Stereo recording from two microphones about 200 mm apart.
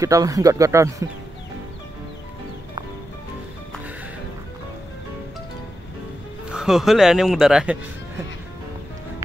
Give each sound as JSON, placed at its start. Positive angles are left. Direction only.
{"t": 0.0, "sound": "speech", "side_deg": -15}
{"t": 6.5, "sound": "speech", "side_deg": 0}